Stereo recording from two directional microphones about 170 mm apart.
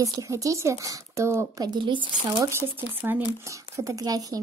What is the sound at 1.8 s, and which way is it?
Speech, 25° right (ahead or behind).